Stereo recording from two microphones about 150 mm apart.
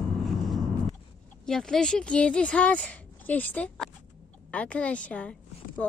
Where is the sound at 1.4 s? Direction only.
5° left (ahead or behind).